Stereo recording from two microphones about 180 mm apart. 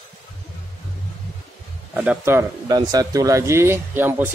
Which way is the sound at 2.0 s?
10° right (ahead or behind).